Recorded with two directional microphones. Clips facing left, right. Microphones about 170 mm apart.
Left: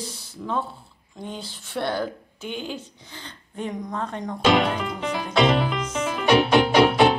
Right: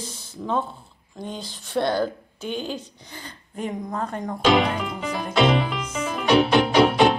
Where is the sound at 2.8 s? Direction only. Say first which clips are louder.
Right 1 dB; 15° right (ahead or behind).